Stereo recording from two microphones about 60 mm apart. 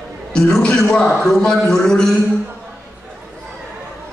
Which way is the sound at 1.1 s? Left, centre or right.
Centre.